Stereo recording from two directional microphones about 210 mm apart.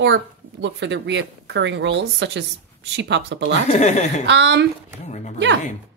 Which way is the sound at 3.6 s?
35° left (ahead or behind).